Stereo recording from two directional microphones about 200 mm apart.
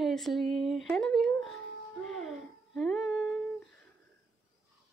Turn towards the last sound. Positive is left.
turn(degrees=5)  # may be behind; listen again after turning